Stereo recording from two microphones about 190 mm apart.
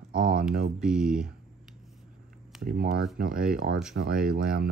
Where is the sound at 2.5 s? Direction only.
Centre (ahead or behind).